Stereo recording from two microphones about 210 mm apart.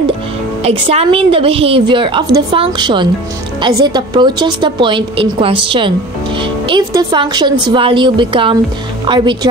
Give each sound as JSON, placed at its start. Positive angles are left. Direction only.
{"t": 0.7, "sound": "a woman's voice", "side_deg": -25}